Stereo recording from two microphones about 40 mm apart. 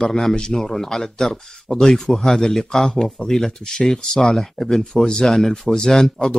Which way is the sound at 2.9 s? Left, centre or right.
Left.